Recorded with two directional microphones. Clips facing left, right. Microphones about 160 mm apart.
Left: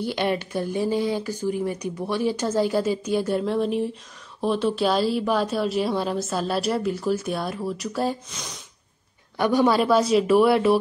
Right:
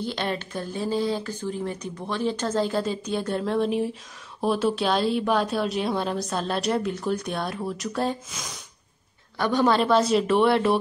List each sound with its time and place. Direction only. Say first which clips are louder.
0.0 s a woman's voice: left 4 dB; 10° left (ahead or behind)
9.4 s a woman's voice: left 2 dB; 10° left (ahead or behind)